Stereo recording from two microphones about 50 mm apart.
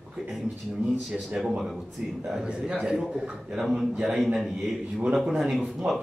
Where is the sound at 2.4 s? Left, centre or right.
Centre.